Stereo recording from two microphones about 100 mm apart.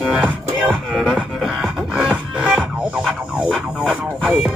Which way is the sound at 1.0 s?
Centre (ahead or behind).